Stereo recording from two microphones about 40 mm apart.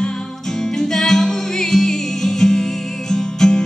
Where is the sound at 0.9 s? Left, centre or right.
Centre.